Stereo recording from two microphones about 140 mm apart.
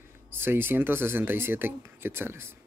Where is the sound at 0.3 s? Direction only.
15° right (ahead or behind).